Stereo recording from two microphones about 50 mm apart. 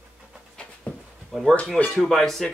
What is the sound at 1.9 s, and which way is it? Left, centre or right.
Speech, centre.